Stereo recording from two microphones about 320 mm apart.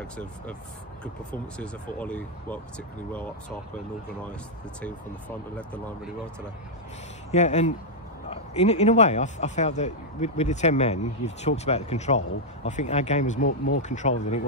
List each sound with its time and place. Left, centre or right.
0.0 s speech: centre
5.6 s speech: centre
7.2 s speech: left